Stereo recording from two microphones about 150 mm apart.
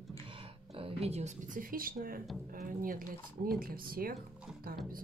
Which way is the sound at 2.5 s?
65° right (ahead or behind).